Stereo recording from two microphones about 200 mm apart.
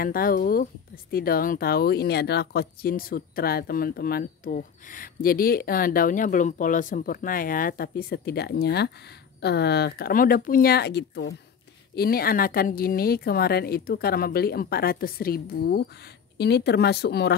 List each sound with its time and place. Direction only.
0.0 s speech: 45° left (ahead or behind)